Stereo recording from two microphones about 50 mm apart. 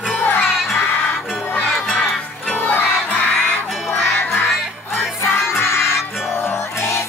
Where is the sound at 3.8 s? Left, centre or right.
Left.